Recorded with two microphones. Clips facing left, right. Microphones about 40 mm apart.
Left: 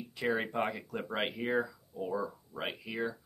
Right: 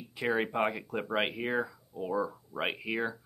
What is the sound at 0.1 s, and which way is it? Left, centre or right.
Speech, centre.